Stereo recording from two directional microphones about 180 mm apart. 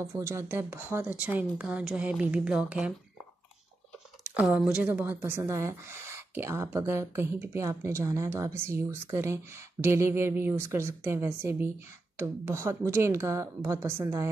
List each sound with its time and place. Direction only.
0.1 s speech: 15° right (ahead or behind)
4.3 s speech: 5° right (ahead or behind)